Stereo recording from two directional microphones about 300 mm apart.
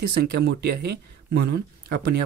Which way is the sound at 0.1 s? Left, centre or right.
Right.